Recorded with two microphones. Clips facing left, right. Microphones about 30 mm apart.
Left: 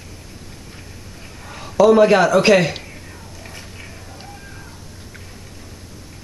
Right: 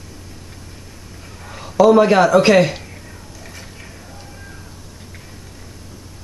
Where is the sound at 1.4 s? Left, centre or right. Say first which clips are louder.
Right 1 dB; centre.